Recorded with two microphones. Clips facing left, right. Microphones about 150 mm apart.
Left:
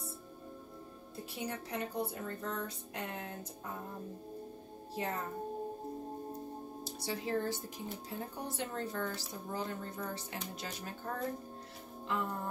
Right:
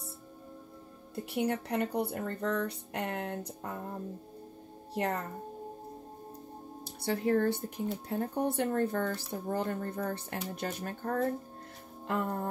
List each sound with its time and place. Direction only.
1.3 s speech: 65° right (ahead or behind)
4.9 s speech: 70° right (ahead or behind)
6.8 s speech: 55° right (ahead or behind)
12.1 s music: 55° right (ahead or behind)